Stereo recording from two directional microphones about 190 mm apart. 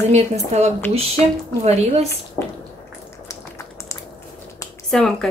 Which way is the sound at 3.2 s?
15° left (ahead or behind).